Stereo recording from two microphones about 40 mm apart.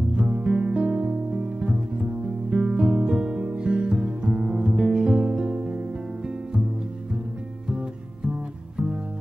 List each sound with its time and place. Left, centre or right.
0.1 s music: right
8.3 s music: right